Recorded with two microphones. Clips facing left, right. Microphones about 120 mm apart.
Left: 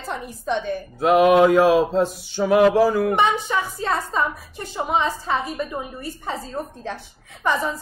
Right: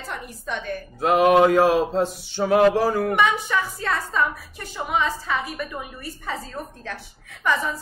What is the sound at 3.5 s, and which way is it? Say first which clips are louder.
A woman's voice: left 2 dB; 20° left (ahead or behind).